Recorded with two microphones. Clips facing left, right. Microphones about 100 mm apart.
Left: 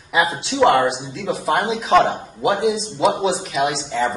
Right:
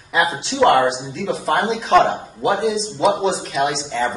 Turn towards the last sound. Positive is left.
turn(degrees=0)  # may be behind; listen again after turning